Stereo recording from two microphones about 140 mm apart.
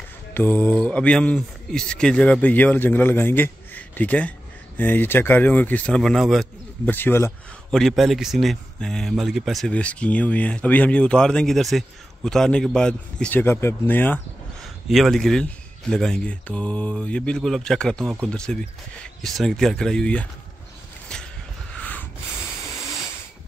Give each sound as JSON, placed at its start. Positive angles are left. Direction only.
{"t": 0.3, "sound": "speech", "side_deg": 15}
{"t": 6.9, "sound": "speech", "side_deg": 15}
{"t": 7.7, "sound": "speech", "side_deg": 0}
{"t": 14.9, "sound": "speech", "side_deg": 0}
{"t": 21.1, "sound": "a sound", "side_deg": 5}